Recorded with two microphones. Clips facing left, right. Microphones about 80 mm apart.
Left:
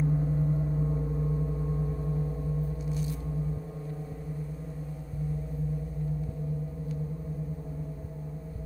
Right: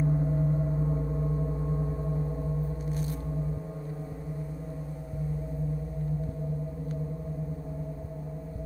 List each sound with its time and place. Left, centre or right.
0.0 s gong: centre
2.9 s gong: right